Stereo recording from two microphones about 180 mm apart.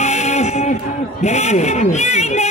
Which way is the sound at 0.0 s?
40° left (ahead or behind).